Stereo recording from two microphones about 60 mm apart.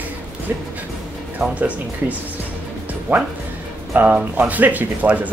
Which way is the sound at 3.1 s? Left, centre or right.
Right.